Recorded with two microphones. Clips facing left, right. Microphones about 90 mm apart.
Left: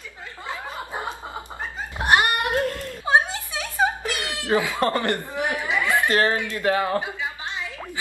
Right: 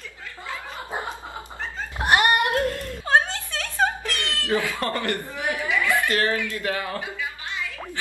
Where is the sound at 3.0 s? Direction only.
10° left (ahead or behind).